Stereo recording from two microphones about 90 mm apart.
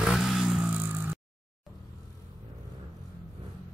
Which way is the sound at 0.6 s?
20° right (ahead or behind).